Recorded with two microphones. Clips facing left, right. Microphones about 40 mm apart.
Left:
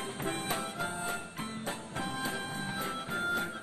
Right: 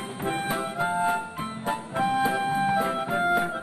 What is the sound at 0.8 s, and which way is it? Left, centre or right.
Music, right.